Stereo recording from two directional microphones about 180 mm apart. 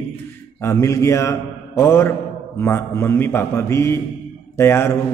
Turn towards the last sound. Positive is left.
turn(degrees=15)  # may be behind; listen again after turning